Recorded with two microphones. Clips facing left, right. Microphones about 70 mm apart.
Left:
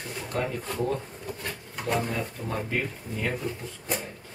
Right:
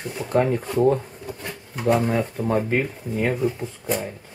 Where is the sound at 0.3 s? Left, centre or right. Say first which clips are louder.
Right 10 dB; right.